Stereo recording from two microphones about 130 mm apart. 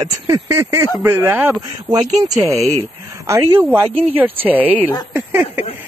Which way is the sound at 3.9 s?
50° right (ahead or behind).